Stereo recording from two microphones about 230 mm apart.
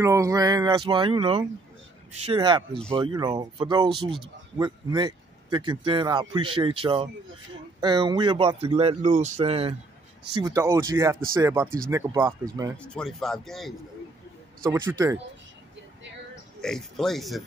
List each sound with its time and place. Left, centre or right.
0.0 s speech: centre
10.4 s speech: centre
12.7 s speech: centre
14.6 s speech: centre
16.6 s speech: centre